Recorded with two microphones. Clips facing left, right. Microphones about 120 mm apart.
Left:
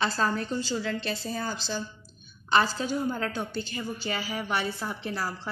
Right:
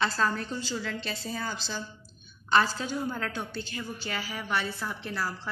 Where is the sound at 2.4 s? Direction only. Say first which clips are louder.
Left 1 dB; 5° left (ahead or behind).